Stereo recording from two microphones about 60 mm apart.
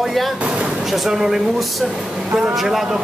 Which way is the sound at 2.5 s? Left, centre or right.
Centre.